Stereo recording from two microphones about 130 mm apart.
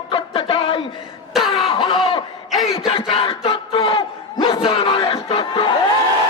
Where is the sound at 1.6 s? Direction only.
40° left (ahead or behind).